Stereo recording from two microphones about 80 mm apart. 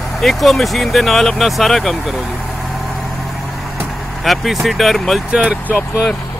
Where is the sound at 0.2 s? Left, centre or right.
Centre.